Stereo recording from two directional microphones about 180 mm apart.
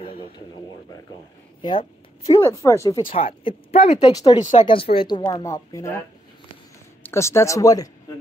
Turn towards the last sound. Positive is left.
turn(degrees=20)  # may be behind; listen again after turning